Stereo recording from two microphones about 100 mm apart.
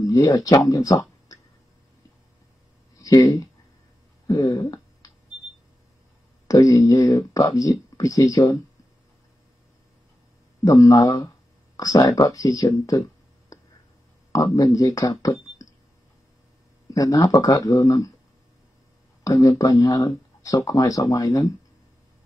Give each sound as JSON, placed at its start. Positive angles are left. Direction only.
{"t": 0.0, "sound": "speech", "side_deg": 35}
{"t": 3.0, "sound": "speech", "side_deg": 35}
{"t": 4.3, "sound": "a sound", "side_deg": 40}
{"t": 6.4, "sound": "speech", "side_deg": 35}
{"t": 10.6, "sound": "speech", "side_deg": 35}
{"t": 16.9, "sound": "speech", "side_deg": 35}
{"t": 19.2, "sound": "speech", "side_deg": 35}